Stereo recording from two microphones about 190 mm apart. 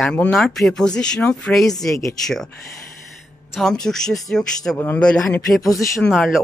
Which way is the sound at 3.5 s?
Centre (ahead or behind).